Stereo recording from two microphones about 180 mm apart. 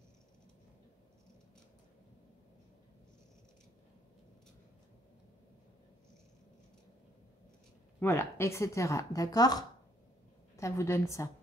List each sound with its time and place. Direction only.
8.0 s a woman's voice: 15° left (ahead or behind)